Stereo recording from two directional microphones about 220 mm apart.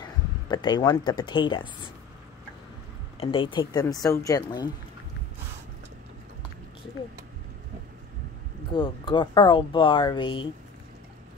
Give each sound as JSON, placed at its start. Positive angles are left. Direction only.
{"t": 0.0, "sound": "speech", "side_deg": 20}
{"t": 3.2, "sound": "a woman's voice", "side_deg": 25}
{"t": 8.7, "sound": "speech", "side_deg": 20}